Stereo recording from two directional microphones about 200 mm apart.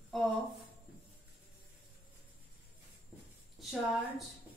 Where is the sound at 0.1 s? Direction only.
Centre (ahead or behind).